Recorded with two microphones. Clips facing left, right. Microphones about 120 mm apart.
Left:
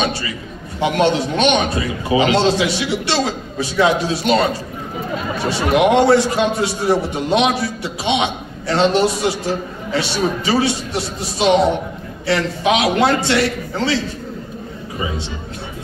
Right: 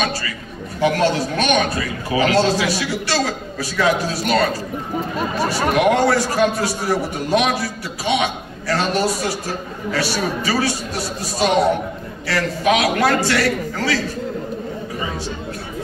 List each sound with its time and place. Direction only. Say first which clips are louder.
0.7 s a man's voice: left 1 dB; 20° left (ahead or behind)